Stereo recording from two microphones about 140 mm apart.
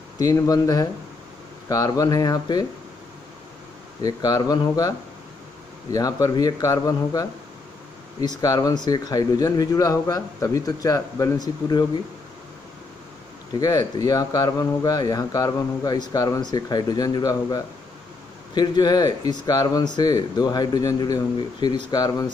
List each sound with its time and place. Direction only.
0.2 s speech: 25° left (ahead or behind)
4.0 s speech: 30° left (ahead or behind)
5.9 s speech: 25° left (ahead or behind)
8.4 s speech: 25° left (ahead or behind)
13.5 s speech: 25° left (ahead or behind)